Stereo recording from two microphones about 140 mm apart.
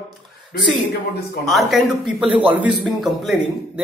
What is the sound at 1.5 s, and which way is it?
Speech, centre (ahead or behind).